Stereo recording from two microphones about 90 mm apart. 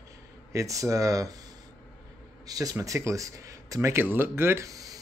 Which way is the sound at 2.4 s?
45° right (ahead or behind).